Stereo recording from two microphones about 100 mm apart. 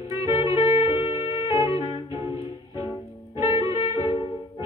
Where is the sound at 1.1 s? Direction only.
75° left (ahead or behind).